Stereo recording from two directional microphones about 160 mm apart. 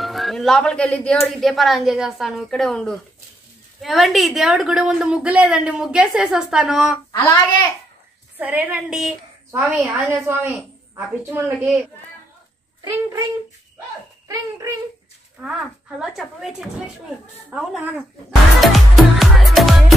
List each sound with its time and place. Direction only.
0.0 s a woman's voice: centre (ahead or behind)
7.1 s a child's voice: 25° left (ahead or behind)
8.4 s a woman's voice: 10° right (ahead or behind)
12.8 s speech: 20° right (ahead or behind)
14.2 s a sound: 20° right (ahead or behind)
15.4 s a woman's voice: 5° right (ahead or behind)
18.6 s music: centre (ahead or behind)